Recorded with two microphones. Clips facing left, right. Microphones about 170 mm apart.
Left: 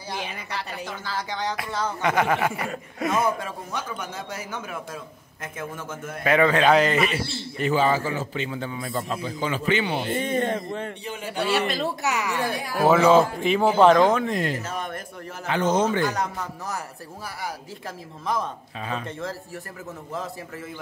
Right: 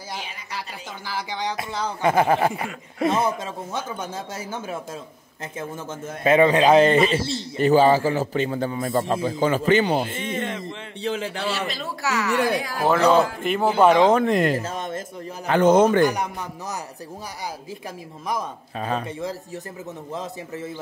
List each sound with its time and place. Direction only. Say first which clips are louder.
0.5 s speech: left 2 dB; 10° right (ahead or behind)
2.0 s a man's voice: right 4 dB; 30° right (ahead or behind)
7.6 s a man's voice: right 6 dB; 35° right (ahead or behind)
10.1 s speech: left 4 dB; 45° left (ahead or behind)
11.5 s a man's voice: left 5 dB; 55° left (ahead or behind)
12.0 s a woman's voice: right 2 dB; 15° left (ahead or behind)
12.4 s speech: right 5 dB; 90° right
12.8 s speech: left 1 dB; 5° left (ahead or behind)
14.2 s speech: right 6 dB; 60° right (ahead or behind)
14.6 s a sound: right 2 dB; 25° right (ahead or behind)
15.4 s speech: right 6 dB; 50° right (ahead or behind)
16.1 s speech: right 1 dB; 15° right (ahead or behind)
18.8 s a man's voice: right 5 dB; 40° right (ahead or behind)
19.0 s a man's voice: right 2 dB; 15° right (ahead or behind)